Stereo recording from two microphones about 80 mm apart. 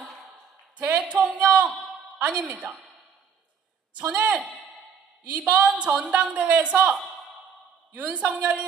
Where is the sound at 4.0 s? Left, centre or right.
Centre.